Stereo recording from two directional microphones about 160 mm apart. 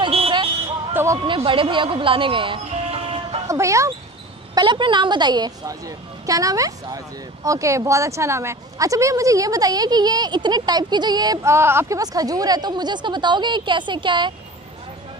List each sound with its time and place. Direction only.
0.0 s music: 35° right (ahead or behind)
0.9 s a sound: 20° right (ahead or behind)
1.2 s speech: 30° right (ahead or behind)
3.4 s speech: 20° right (ahead or behind)
4.6 s a woman's voice: 30° right (ahead or behind)